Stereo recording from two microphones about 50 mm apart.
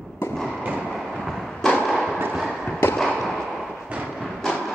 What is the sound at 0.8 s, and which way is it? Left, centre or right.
Train, centre.